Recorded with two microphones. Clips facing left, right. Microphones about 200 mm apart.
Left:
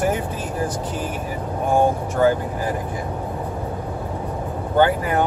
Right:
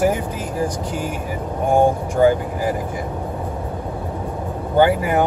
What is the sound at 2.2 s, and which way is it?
Speech, 15° right (ahead or behind).